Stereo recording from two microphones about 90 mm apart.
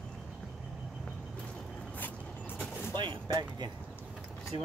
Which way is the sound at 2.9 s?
60° right (ahead or behind).